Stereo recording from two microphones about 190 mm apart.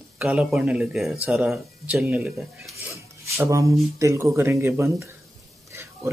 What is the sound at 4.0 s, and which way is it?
Speech, 15° right (ahead or behind).